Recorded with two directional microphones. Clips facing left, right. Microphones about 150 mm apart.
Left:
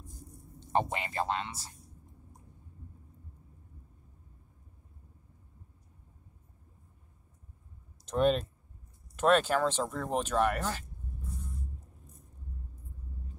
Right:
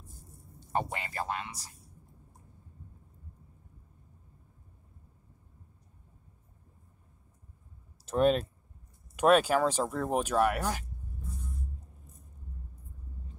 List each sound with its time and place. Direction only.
0.6 s speech: 20° left (ahead or behind)
8.0 s speech: 5° right (ahead or behind)